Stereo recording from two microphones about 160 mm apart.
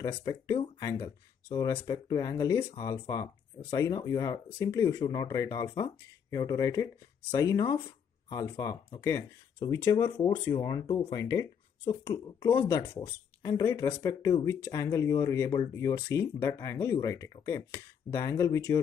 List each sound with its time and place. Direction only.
0.0 s speech: 20° left (ahead or behind)